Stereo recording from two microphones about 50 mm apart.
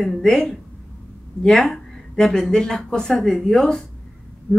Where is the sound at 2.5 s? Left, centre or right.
Centre.